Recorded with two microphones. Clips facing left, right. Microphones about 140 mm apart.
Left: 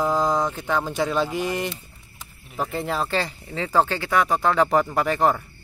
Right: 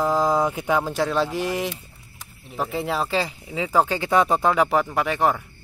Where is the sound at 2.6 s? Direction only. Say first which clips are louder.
Right 1 dB; centre (ahead or behind); by 4.5 s 20° right (ahead or behind).